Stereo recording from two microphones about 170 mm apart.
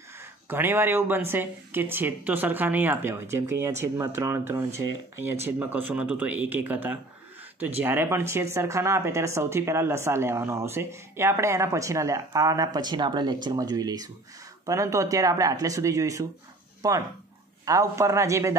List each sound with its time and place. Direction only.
0.5 s speech: 15° right (ahead or behind)